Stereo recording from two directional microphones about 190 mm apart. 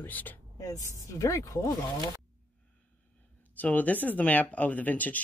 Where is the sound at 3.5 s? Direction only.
10° left (ahead or behind).